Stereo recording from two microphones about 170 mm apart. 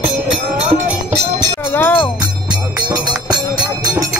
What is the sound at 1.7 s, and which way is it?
Music, 10° left (ahead or behind).